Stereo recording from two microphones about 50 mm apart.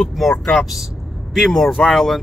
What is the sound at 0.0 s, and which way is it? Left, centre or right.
Speech, centre.